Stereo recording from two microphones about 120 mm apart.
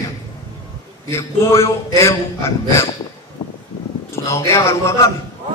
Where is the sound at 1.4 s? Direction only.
25° left (ahead or behind).